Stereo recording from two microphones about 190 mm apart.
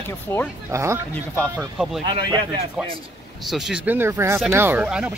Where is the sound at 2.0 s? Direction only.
25° right (ahead or behind).